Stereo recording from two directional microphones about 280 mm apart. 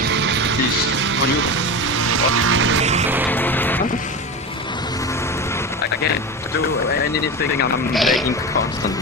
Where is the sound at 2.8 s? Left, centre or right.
Right.